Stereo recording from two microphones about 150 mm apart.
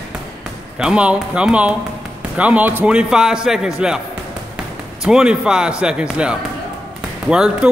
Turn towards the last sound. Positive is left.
turn(degrees=-5)  # may be behind; listen again after turning